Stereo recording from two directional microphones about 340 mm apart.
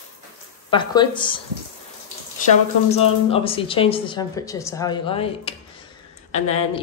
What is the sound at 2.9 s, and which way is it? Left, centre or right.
A woman's voice, centre.